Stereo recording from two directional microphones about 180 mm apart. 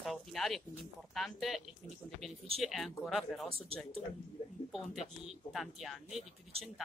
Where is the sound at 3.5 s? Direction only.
30° right (ahead or behind).